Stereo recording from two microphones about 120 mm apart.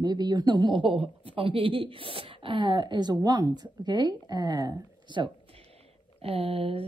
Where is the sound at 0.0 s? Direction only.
35° right (ahead or behind).